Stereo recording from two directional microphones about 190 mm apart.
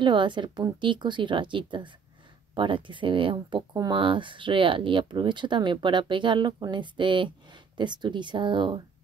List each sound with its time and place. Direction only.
0.0 s speech: 25° right (ahead or behind)